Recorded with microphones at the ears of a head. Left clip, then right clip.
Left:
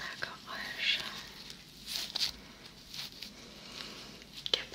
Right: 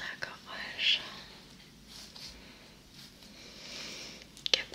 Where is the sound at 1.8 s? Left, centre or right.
Left.